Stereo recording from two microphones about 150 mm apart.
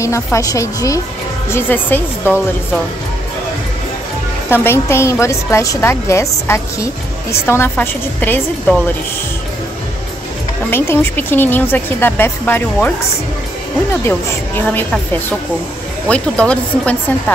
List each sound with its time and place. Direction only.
0.0 s a woman's voice: 20° left (ahead or behind)
4.5 s a woman's voice: 15° left (ahead or behind)
10.7 s a woman's voice: 15° left (ahead or behind)
14.0 s a woman's voice: 15° left (ahead or behind)
16.1 s a woman's voice: 10° left (ahead or behind)